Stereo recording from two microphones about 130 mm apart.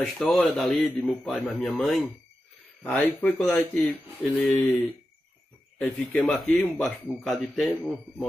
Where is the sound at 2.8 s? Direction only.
15° left (ahead or behind).